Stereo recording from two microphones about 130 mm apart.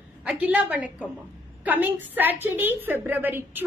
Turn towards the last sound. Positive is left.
turn(degrees=-15)  # may be behind; listen again after turning